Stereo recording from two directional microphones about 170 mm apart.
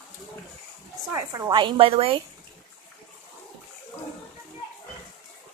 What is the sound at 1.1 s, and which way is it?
A woman's voice, 20° right (ahead or behind).